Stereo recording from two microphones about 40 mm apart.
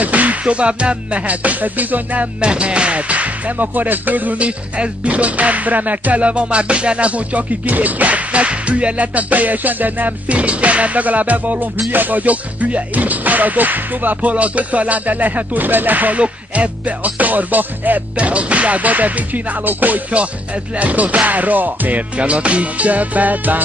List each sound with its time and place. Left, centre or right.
0.0 s music: right
2.4 s music: right
4.4 s music: right
16.2 s music: right
18.1 s music: right
20.1 s music: right
22.1 s music: right